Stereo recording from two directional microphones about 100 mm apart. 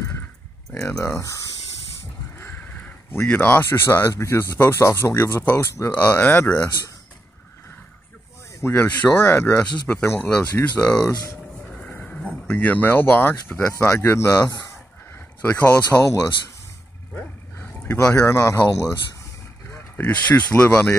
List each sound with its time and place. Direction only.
1.1 s speech: 30° left (ahead or behind)
2.3 s speech: 20° left (ahead or behind)
8.5 s speech: 20° left (ahead or behind)
11.0 s speech: 35° left (ahead or behind)
11.6 s a sound: 10° left (ahead or behind)
13.7 s speech: 20° left (ahead or behind)
16.0 s speech: 30° left (ahead or behind)
17.1 s fowl: 25° left (ahead or behind)
18.1 s speech: 25° left (ahead or behind)
19.7 s speech: 20° left (ahead or behind)